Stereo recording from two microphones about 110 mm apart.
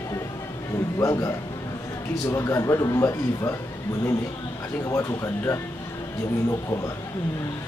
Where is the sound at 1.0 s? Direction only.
30° left (ahead or behind).